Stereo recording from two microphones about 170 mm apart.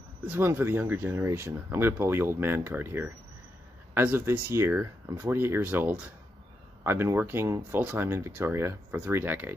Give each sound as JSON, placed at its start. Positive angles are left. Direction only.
{"t": 0.3, "sound": "speech", "side_deg": -15}